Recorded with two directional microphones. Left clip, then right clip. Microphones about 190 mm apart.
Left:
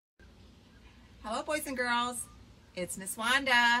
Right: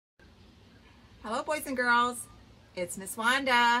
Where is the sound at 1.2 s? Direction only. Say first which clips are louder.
Right 2 dB; 15° right (ahead or behind).